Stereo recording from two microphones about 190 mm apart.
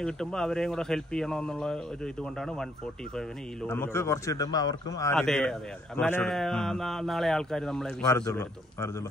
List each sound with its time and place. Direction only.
0.0 s a man's voice: 5° left (ahead or behind)
3.6 s speech: 10° left (ahead or behind)
5.1 s a man's voice: 5° left (ahead or behind)
8.1 s speech: 15° left (ahead or behind)